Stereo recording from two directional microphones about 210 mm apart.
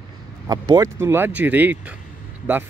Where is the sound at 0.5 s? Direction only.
20° right (ahead or behind).